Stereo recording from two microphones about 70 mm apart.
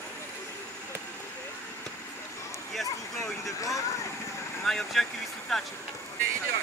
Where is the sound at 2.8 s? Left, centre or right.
Left.